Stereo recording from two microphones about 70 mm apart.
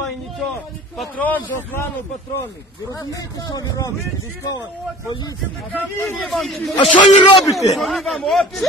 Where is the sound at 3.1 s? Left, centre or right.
Left.